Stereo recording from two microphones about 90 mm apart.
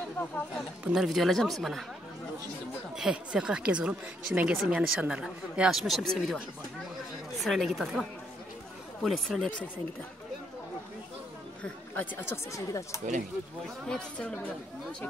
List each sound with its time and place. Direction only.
0.9 s speech: centre (ahead or behind)
3.0 s speech: 10° right (ahead or behind)
7.3 s speech: centre (ahead or behind)
11.9 s speech: 25° left (ahead or behind)
12.5 s speech: 35° left (ahead or behind)
13.8 s speech: 10° left (ahead or behind)